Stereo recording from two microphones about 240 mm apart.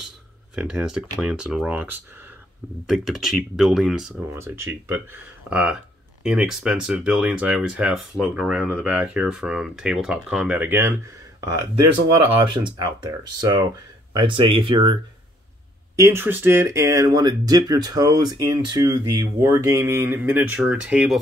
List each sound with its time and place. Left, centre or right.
0.6 s speech: centre
12.4 s speech: centre
16.0 s speech: centre